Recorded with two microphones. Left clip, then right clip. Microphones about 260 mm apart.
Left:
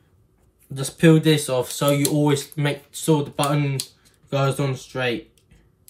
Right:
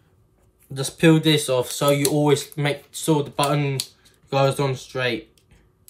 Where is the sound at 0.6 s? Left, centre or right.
Centre.